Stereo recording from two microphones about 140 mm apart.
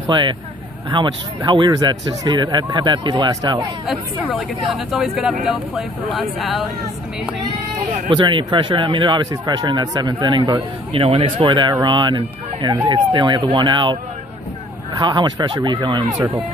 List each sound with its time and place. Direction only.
0.0 s speech: 35° right (ahead or behind)
4.3 s speech: centre (ahead or behind)
7.8 s speech: 35° right (ahead or behind)
10.9 s speech: 45° right (ahead or behind)
15.0 s speech: 30° right (ahead or behind)